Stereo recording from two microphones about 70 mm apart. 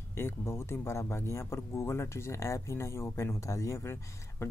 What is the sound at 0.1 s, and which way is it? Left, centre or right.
Speech, left.